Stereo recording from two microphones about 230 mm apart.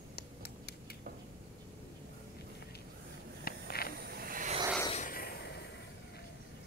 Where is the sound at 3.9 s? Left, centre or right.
Right.